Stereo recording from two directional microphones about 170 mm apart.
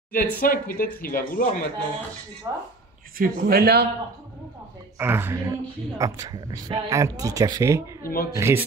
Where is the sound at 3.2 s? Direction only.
65° right (ahead or behind).